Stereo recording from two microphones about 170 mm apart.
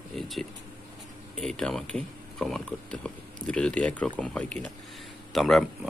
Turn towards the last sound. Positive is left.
turn(degrees=0)  # may be behind; listen again after turning